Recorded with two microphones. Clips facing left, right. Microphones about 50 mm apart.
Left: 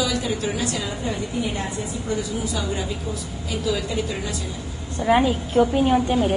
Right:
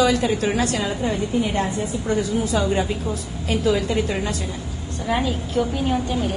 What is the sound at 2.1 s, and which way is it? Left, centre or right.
A woman's voice, right.